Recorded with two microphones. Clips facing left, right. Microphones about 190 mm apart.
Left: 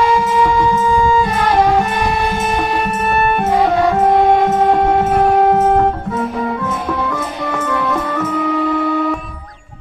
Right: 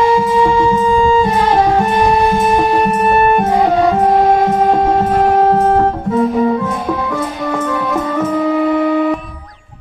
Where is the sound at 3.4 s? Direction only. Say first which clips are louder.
Right 2 dB; 15° right (ahead or behind).